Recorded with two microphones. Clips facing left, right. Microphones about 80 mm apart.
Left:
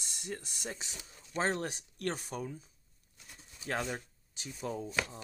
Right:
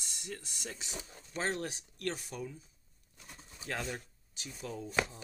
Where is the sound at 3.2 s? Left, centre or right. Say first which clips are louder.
Right 3 dB; right.